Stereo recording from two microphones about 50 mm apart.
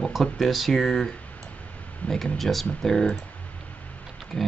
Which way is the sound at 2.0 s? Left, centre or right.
Left.